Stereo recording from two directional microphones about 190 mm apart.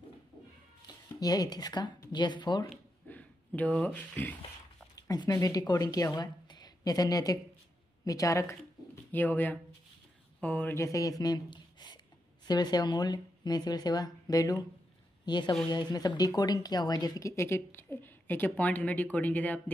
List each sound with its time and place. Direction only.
0.8 s speech: 20° left (ahead or behind)
3.1 s speech: 10° left (ahead or behind)
4.9 s a woman's voice: 20° left (ahead or behind)